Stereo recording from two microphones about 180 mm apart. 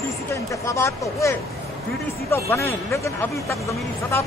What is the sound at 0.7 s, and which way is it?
Speech, 15° left (ahead or behind).